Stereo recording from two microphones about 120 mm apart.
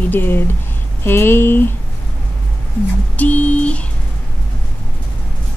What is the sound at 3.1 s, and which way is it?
Speech, 10° left (ahead or behind).